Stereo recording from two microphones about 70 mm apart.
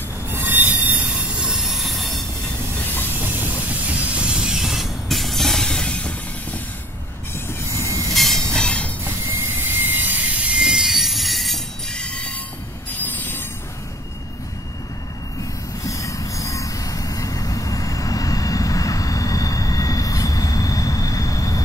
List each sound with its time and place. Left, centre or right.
0.3 s train wheels squealing: right
1.4 s train wheels squealing: centre
2.8 s railroad car: left
3.2 s train: right; by 6.6 s centre
7.3 s train: left
8.1 s train: centre
8.5 s train: centre
9.6 s vehicle: right
10.5 s train wheels squealing: centre
13.0 s rail transport: left
15.8 s train: left